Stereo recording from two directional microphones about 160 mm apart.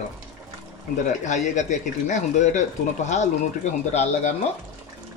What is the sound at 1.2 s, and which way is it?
Speech, 50° left (ahead or behind).